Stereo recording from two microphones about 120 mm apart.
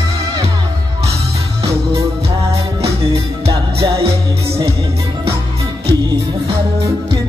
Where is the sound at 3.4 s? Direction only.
50° right (ahead or behind).